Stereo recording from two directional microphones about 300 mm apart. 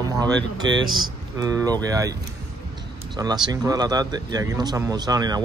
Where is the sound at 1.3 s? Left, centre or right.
Centre.